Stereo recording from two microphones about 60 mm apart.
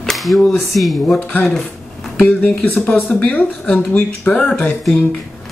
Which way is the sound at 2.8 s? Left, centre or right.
Left.